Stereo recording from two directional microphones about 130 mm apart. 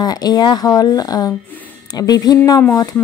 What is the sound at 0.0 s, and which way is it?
Speech, 30° left (ahead or behind).